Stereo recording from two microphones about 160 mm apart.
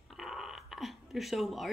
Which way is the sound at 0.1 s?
Centre (ahead or behind).